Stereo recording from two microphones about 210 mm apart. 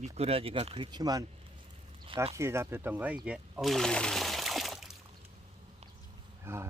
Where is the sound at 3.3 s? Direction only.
Centre (ahead or behind).